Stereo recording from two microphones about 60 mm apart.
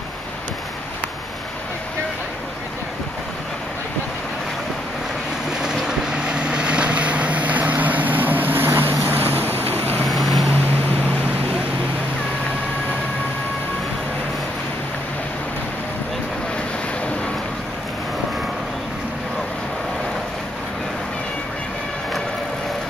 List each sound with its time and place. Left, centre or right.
5.5 s vehicle: centre; by 8.9 s right
9.1 s boat: right
9.8 s vehicle: left
10.0 s boat: centre